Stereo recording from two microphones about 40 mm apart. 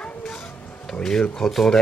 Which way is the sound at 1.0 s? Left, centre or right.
Centre.